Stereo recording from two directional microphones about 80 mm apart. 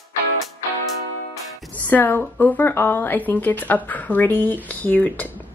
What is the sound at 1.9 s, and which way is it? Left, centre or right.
A woman's voice, left.